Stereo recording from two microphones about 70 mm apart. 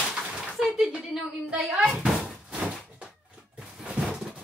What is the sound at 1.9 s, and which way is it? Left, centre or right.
Cupboard open or close, centre.